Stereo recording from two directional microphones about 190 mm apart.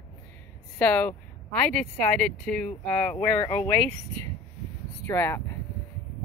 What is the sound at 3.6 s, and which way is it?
Speech, 10° left (ahead or behind).